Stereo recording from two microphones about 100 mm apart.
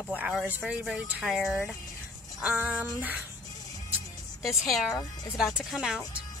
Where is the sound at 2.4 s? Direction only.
15° right (ahead or behind).